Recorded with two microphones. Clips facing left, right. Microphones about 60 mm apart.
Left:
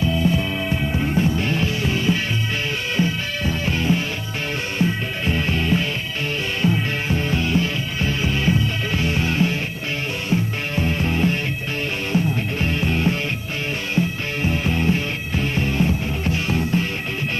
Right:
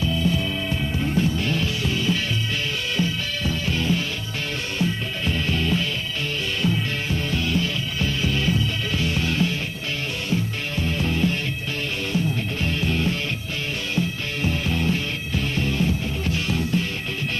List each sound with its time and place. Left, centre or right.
0.0 s music: left